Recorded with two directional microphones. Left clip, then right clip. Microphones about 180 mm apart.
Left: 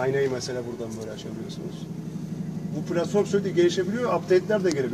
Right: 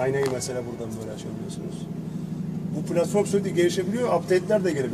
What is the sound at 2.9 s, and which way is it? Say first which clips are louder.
A man's voice: right 1 dB; 15° right (ahead or behind).